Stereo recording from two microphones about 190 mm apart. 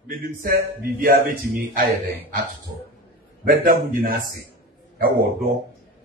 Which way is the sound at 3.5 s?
50° right (ahead or behind).